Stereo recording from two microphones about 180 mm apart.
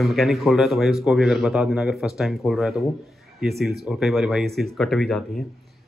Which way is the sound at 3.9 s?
Centre (ahead or behind).